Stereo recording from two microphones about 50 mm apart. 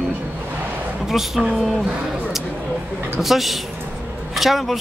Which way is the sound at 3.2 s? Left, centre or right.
Centre.